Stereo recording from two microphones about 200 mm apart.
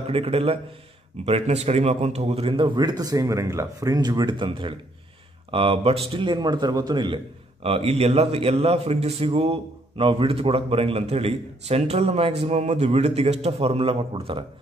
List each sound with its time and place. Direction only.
0.0 s a man's voice: 30° right (ahead or behind)